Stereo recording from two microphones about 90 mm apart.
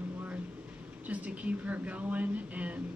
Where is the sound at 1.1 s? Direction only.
15° right (ahead or behind).